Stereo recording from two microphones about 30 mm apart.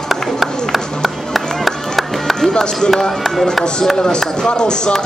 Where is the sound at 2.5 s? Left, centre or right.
Left.